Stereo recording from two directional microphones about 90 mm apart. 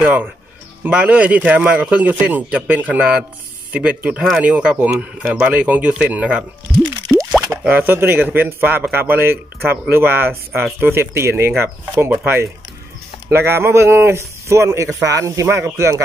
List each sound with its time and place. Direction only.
0.0 s a man's voice: 15° right (ahead or behind)
7.2 s plop: centre (ahead or behind)
7.6 s a man's voice: 20° right (ahead or behind)
13.3 s a man's voice: 25° right (ahead or behind)